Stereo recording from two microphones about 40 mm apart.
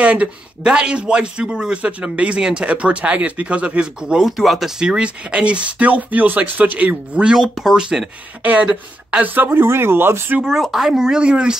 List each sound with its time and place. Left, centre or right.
0.0 s a sound: right
0.7 s a man's voice: right
3.8 s speech: centre
4.3 s speech: centre
5.0 s a man's voice: right
6.9 s speech: right
7.3 s speech: centre
8.4 s speech: right
9.6 s speech: right
10.6 s speech: centre
10.9 s speech: centre